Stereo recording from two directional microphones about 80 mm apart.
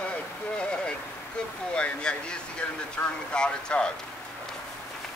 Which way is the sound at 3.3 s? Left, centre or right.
Centre.